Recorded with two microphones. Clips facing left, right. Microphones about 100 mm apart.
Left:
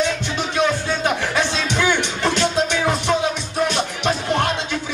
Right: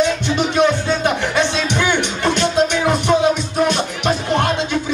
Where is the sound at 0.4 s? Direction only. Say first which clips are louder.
Right 4 dB; 15° right (ahead or behind).